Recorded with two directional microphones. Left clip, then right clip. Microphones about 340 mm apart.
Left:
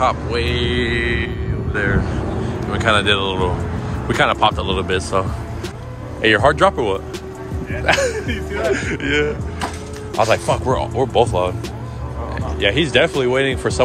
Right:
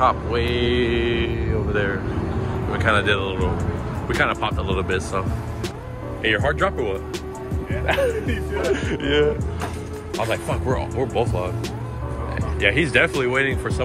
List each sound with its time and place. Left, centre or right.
0.0 s speech: centre
1.0 s music: right
1.7 s speech: centre
6.2 s speech: centre
12.5 s speech: centre